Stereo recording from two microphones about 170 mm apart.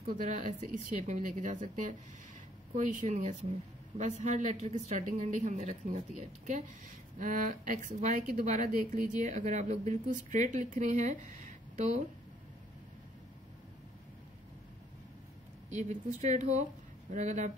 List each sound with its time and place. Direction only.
0.0 s a woman's voice: 50° right (ahead or behind)
7.2 s a woman's voice: 50° right (ahead or behind)
15.7 s a woman's voice: 45° right (ahead or behind)